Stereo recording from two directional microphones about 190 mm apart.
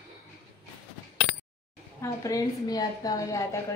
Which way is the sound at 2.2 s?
20° left (ahead or behind).